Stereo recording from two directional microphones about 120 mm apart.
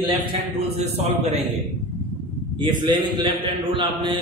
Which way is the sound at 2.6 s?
40° right (ahead or behind).